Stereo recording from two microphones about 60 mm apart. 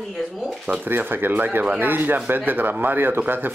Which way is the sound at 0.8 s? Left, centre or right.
Right.